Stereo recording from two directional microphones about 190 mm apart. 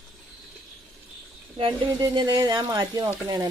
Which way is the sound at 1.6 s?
20° right (ahead or behind).